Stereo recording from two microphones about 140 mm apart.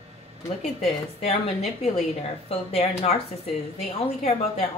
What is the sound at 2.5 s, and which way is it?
Speech, 45° left (ahead or behind).